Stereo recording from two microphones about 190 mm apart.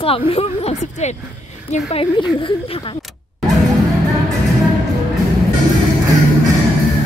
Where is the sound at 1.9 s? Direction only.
25° left (ahead or behind).